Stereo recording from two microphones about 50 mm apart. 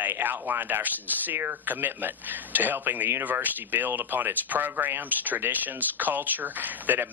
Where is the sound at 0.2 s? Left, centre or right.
Right.